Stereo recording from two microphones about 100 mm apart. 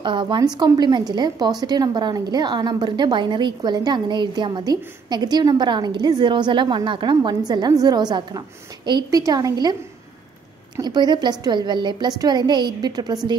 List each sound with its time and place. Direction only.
0.0 s a woman's voice: 55° right (ahead or behind)
0.4 s a woman's voice: 40° right (ahead or behind)
10.8 s a woman's voice: 45° right (ahead or behind)